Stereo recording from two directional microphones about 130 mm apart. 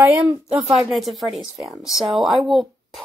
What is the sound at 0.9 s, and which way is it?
A woman's voice, centre (ahead or behind).